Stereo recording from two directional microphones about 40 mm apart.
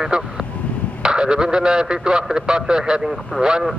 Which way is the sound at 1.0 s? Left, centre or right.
Right.